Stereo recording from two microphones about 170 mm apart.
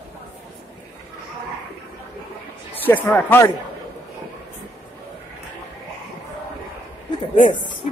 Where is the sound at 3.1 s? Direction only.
10° left (ahead or behind).